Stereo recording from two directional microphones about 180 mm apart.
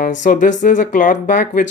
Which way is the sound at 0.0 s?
45° left (ahead or behind).